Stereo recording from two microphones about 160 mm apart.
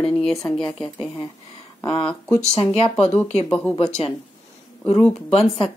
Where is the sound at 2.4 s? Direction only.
40° left (ahead or behind).